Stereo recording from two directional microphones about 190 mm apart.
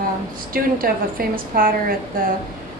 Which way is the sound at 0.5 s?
50° right (ahead or behind).